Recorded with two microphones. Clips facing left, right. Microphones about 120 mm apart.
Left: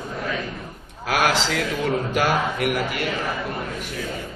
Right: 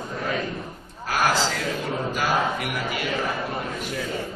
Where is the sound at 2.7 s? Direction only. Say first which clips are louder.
Left 4 dB; 55° left (ahead or behind).